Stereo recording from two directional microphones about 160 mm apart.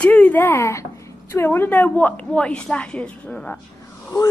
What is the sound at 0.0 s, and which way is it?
Speech, 10° left (ahead or behind).